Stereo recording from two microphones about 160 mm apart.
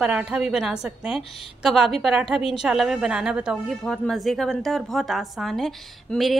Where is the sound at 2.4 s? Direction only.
35° left (ahead or behind).